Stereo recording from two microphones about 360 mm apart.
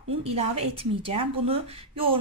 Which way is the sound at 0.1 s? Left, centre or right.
Centre.